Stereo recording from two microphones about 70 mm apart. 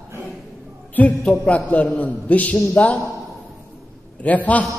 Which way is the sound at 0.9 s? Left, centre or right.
Centre.